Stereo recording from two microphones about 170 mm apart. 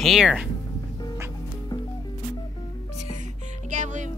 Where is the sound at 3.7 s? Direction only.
45° right (ahead or behind).